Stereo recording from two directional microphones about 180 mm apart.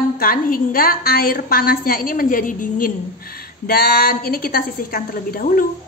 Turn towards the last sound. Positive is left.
turn(degrees=50)  # may be behind; listen again after turning